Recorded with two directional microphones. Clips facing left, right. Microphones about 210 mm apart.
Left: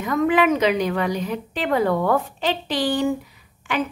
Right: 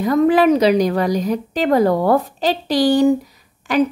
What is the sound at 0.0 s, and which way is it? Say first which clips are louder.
A woman's voice: right 5 dB; 35° right (ahead or behind).